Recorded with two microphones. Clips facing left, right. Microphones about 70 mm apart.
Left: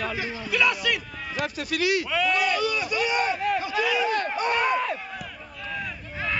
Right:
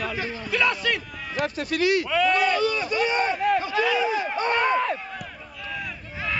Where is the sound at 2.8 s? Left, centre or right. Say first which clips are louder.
Right 2 dB; right.